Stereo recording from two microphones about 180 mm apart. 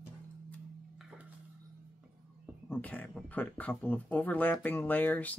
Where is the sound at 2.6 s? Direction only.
10° left (ahead or behind).